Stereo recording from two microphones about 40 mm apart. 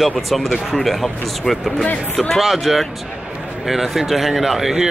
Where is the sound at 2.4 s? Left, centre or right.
Centre.